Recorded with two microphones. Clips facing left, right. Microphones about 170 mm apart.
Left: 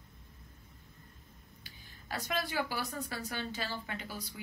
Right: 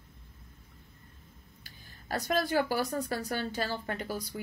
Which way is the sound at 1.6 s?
45° right (ahead or behind).